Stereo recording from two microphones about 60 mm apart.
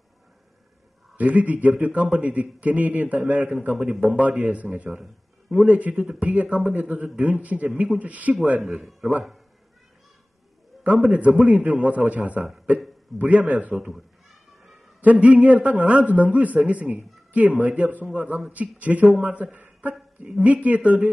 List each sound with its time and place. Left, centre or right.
1.1 s a man's voice: right
4.9 s a man's voice: centre
5.7 s a man's voice: right
8.6 s a man's voice: centre
10.8 s a man's voice: right
13.7 s a man's voice: centre
15.0 s a man's voice: right